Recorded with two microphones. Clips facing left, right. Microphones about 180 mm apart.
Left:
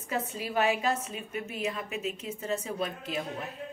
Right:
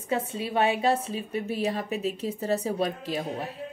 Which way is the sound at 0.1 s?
30° right (ahead or behind).